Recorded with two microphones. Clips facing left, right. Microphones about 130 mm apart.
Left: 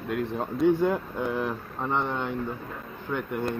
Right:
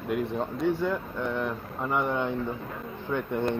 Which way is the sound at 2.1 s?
15° right (ahead or behind).